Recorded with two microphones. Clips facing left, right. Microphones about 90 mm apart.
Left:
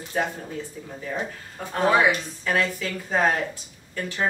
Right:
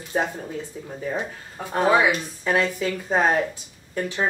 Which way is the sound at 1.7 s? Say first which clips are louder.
Right 1 dB; 15° right (ahead or behind).